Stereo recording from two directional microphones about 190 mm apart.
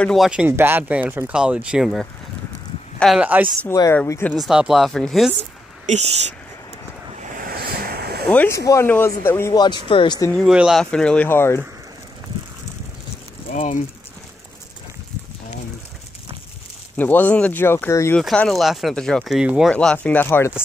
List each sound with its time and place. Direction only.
0.0 s speech: centre (ahead or behind)
3.6 s speech: 15° left (ahead or behind)
4.3 s speech: 5° right (ahead or behind)
5.4 s a sound: 35° right (ahead or behind)
7.2 s waves: 50° right (ahead or behind)
8.3 s speech: 10° left (ahead or behind)
10.3 s speech: 5° right (ahead or behind); by 11.6 s 10° left (ahead or behind)
13.6 s speech: 40° left (ahead or behind)
16.9 s speech: 10° left (ahead or behind)
18.2 s speech: 5° left (ahead or behind)